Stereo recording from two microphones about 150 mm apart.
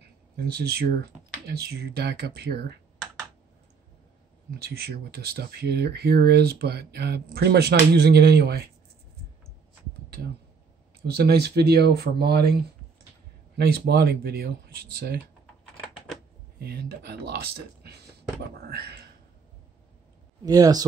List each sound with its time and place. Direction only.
0.5 s speech: 90° right
4.6 s speech: 90° right
11.1 s speech: 90° right
13.6 s speech: 90° right
16.5 s speech: 90° right
18.7 s speech: 90° right
20.4 s speech: 25° right (ahead or behind)